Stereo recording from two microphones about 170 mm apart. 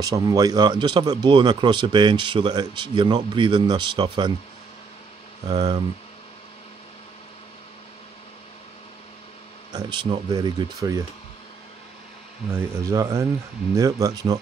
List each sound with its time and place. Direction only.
0.0 s speech: 20° right (ahead or behind)
5.5 s speech: 25° right (ahead or behind)
9.7 s speech: 25° right (ahead or behind)
12.4 s speech: 15° right (ahead or behind)